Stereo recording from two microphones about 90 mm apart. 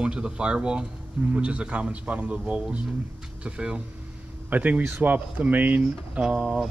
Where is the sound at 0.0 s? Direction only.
10° right (ahead or behind).